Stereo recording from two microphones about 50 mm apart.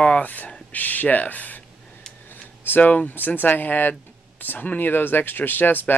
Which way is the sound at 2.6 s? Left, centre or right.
Left.